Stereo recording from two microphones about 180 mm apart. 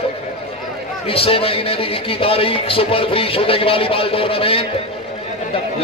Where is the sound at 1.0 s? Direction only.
30° left (ahead or behind).